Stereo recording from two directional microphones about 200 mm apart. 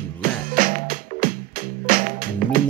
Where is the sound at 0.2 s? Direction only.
45° right (ahead or behind).